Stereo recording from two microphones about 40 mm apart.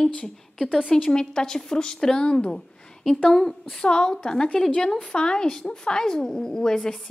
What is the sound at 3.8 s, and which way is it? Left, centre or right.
A woman's voice, left.